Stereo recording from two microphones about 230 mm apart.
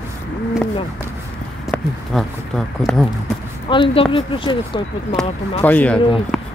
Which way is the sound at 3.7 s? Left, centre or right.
Left.